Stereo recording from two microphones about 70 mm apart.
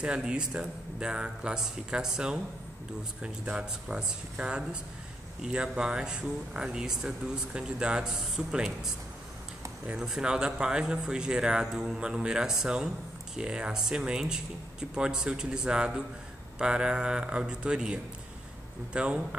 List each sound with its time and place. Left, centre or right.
0.0 s speech: centre